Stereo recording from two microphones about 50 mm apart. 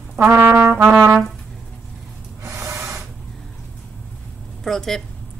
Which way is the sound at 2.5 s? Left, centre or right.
Right.